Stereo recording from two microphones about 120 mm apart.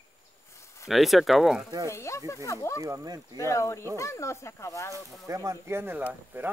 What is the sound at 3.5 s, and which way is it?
A woman's voice, 25° left (ahead or behind).